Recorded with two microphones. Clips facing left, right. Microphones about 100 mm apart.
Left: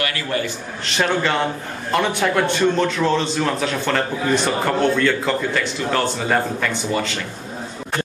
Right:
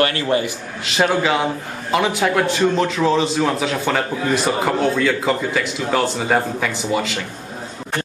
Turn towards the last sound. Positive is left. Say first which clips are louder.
# right 1 dB
turn(degrees=-5)  # may be behind; listen again after turning